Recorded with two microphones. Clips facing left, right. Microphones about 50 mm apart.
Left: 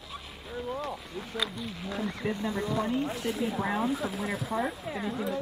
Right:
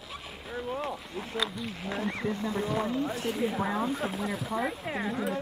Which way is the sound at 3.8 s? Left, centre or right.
Right.